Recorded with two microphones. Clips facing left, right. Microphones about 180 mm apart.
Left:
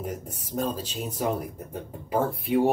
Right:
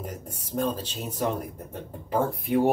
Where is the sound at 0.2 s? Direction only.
10° left (ahead or behind).